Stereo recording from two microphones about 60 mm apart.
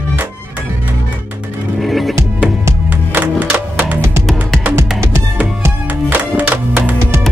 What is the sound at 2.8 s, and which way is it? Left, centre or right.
Music, right.